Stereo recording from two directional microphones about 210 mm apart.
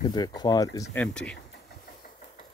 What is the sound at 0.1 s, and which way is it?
Speech, 20° left (ahead or behind).